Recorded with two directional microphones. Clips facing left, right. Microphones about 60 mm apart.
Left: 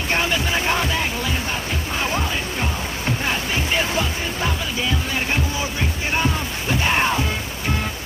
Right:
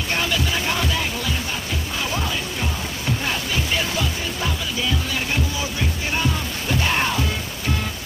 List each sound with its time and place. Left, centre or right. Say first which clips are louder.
0.1 s music: left 2 dB; left
6.1 s music: left 3 dB; left